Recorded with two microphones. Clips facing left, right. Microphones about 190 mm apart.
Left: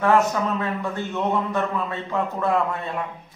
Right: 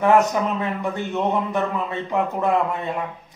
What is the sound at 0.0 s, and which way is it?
A man's voice, 15° right (ahead or behind).